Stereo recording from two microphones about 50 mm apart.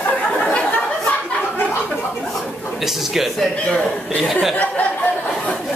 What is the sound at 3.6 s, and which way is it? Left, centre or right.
Speech, centre.